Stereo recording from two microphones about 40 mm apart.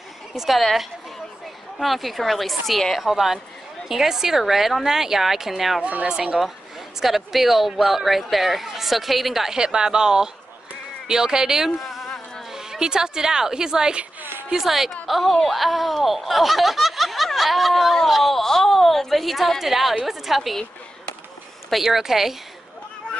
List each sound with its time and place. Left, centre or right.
0.3 s a woman's voice: centre
0.6 s a woman's voice: centre
7.0 s speech: centre
9.6 s a woman's voice: centre
21.6 s a woman's voice: centre